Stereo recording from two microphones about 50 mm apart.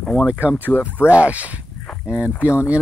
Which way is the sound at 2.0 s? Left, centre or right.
Centre.